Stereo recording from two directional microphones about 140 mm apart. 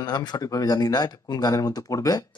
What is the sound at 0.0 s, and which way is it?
Speech, 30° left (ahead or behind).